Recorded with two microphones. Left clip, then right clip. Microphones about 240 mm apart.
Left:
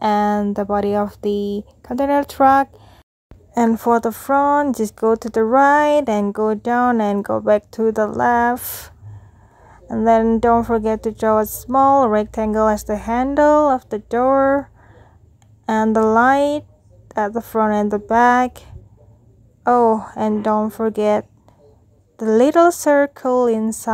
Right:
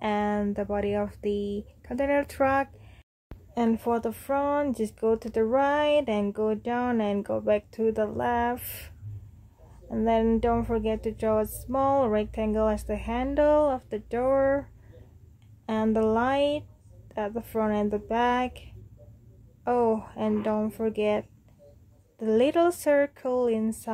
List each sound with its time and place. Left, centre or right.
0.0 s speech: left